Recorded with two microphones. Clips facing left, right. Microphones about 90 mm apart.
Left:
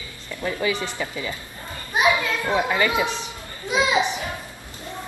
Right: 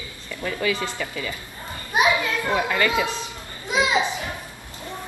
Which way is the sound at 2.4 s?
15° left (ahead or behind).